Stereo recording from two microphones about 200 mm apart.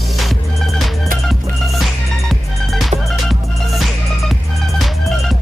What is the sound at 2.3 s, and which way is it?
Music, centre (ahead or behind).